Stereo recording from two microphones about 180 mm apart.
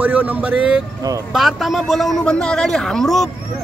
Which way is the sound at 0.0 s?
10° right (ahead or behind).